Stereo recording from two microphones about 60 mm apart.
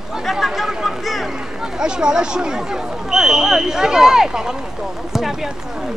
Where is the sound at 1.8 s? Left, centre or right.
Centre.